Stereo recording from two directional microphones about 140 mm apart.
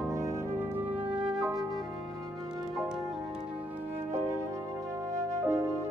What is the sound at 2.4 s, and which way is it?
Music, 30° right (ahead or behind).